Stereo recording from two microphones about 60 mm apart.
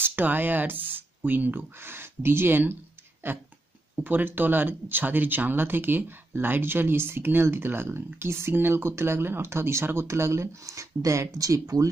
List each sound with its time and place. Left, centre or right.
0.0 s speech: right